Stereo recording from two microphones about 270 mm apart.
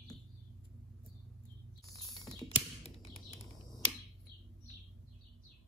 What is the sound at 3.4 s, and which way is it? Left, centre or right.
Finger snapping, centre.